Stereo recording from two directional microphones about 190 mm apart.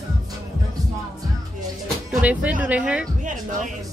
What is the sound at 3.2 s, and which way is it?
Music, 40° right (ahead or behind).